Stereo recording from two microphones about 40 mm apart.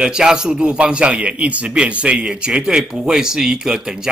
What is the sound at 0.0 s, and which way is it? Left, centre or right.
A man's voice, centre.